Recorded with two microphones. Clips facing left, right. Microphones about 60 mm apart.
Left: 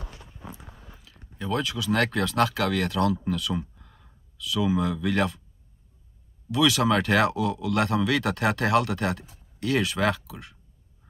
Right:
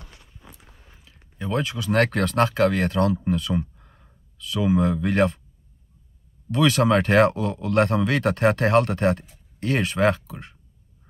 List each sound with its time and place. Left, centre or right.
0.1 s clip-clop: left
0.6 s a sound: left
1.0 s speech: right
2.3 s speech: right
3.7 s a sound: right
6.5 s speech: right